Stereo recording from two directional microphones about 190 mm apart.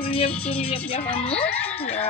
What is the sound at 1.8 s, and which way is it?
Speech, 30° left (ahead or behind).